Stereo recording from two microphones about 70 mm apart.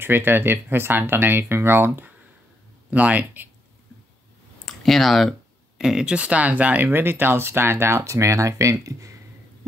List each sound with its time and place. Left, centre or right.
0.0 s speech: right
2.9 s speech: right
4.6 s speech: centre
5.8 s speech: centre; by 9.1 s right